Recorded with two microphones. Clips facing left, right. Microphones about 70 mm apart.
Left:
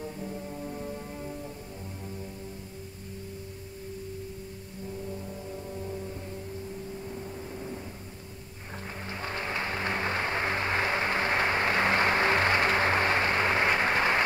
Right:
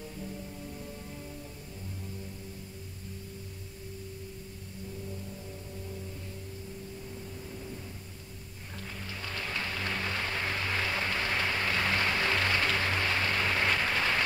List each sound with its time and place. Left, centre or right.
0.0 s brass instrument: left
7.1 s vehicle: left
9.0 s music: left